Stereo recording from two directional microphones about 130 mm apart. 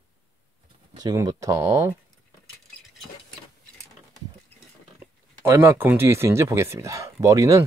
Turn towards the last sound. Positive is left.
turn(degrees=-25)  # may be behind; listen again after turning